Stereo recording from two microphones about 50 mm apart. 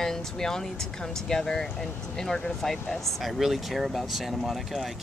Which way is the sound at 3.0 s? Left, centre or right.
Centre.